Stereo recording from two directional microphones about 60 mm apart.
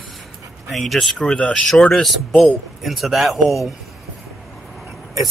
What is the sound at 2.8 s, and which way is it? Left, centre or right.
Speech, centre.